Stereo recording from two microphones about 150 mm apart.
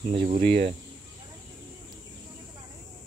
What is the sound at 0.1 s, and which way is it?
Speech, 40° right (ahead or behind).